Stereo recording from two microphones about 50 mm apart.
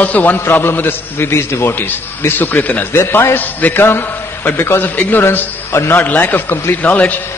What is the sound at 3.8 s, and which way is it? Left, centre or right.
Speech, left.